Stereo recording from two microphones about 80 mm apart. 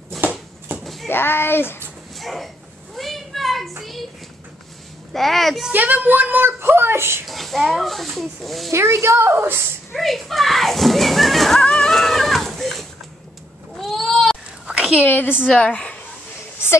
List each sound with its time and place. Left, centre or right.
0.2 s a sound: right
1.0 s speech: left
2.1 s a sound: centre
3.0 s children playing: centre
5.1 s speech: centre
5.7 s speech: right
7.2 s speech: centre
8.7 s a woman's voice: right
9.9 s speech: centre
11.6 s a sound: centre
14.7 s a sound: centre
15.5 s a woman's voice: centre